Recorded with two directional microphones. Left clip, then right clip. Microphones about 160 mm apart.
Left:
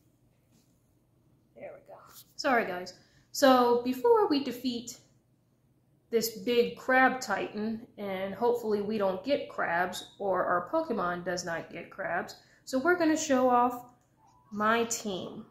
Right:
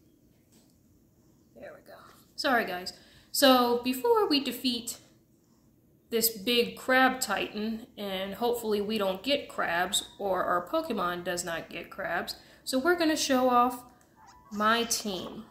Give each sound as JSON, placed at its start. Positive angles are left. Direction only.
{"t": 1.6, "sound": "a sound", "side_deg": -15}
{"t": 2.5, "sound": "speech", "side_deg": -10}
{"t": 6.0, "sound": "speech", "side_deg": -15}
{"t": 13.4, "sound": "speech", "side_deg": -30}
{"t": 14.6, "sound": "speech", "side_deg": -15}